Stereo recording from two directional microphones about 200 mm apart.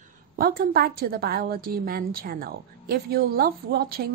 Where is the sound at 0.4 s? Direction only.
50° right (ahead or behind).